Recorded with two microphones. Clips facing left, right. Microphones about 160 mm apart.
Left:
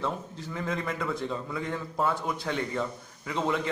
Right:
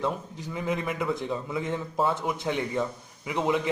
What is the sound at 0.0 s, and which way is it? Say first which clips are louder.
A man's voice: right 2 dB; 15° right (ahead or behind).